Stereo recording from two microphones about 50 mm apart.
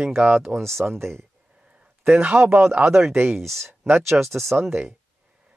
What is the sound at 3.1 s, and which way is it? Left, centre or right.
Speech, right.